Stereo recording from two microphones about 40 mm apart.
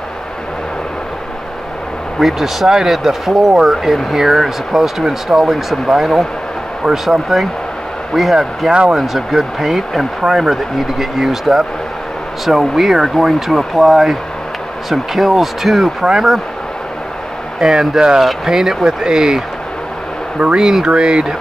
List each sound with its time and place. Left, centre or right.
2.1 s speech: centre
17.6 s speech: centre
20.5 s speech: centre